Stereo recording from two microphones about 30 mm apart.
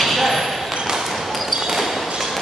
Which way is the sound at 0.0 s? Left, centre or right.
Centre.